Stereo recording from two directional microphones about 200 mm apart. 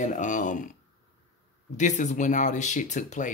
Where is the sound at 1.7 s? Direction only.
35° left (ahead or behind).